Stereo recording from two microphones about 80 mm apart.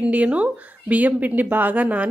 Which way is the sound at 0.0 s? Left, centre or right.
Centre.